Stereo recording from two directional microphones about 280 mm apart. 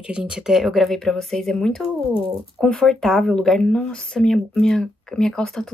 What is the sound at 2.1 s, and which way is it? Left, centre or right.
Speech, centre.